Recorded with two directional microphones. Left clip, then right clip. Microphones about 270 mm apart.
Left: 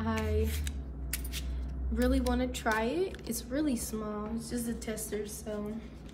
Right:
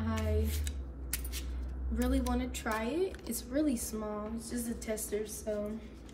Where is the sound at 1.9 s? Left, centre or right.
Centre.